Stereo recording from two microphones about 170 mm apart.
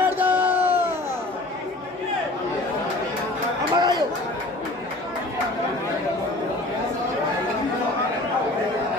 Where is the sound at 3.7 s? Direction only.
25° right (ahead or behind).